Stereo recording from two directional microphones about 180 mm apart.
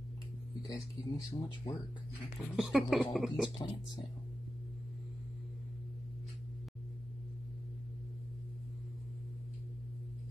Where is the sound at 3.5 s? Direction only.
25° left (ahead or behind).